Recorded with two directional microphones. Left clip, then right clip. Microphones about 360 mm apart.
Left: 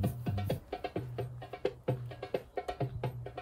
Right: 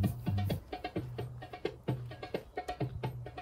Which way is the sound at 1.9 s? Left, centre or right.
Centre.